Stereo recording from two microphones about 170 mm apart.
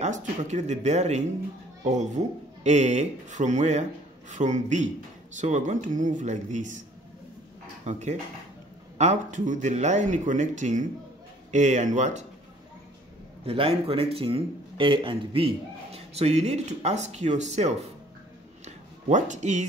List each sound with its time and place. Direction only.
0.0 s speech: 45° right (ahead or behind)
7.8 s speech: 45° right (ahead or behind)
13.5 s a man's voice: 35° right (ahead or behind)
19.0 s speech: 45° right (ahead or behind)